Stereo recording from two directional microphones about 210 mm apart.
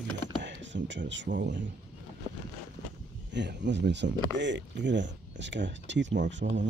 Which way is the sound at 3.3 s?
55° right (ahead or behind).